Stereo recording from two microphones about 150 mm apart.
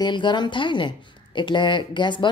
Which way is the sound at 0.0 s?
30° left (ahead or behind).